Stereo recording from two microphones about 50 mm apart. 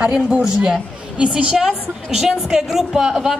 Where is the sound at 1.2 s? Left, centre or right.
Right.